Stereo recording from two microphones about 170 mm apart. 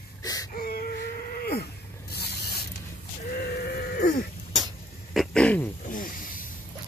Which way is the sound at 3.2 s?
65° left (ahead or behind).